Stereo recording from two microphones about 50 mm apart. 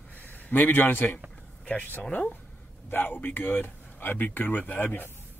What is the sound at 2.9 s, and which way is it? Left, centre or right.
Speech, left.